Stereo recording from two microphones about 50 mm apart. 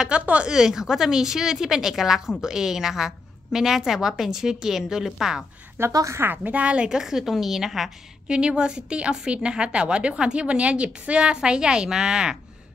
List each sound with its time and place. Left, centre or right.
0.2 s a woman's voice: right
0.5 s a woman's voice: centre
5.8 s a woman's voice: right
6.2 s a woman's voice: right; by 7.9 s centre
8.3 s a woman's voice: centre